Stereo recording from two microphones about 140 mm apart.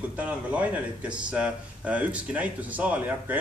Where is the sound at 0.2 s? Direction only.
10° right (ahead or behind).